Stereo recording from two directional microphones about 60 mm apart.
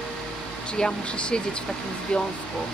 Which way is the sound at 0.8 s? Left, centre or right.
Centre.